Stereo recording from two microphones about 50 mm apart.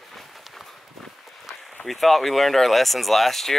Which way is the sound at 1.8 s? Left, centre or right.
Centre.